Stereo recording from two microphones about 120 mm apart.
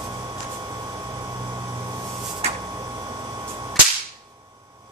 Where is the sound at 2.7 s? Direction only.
30° right (ahead or behind).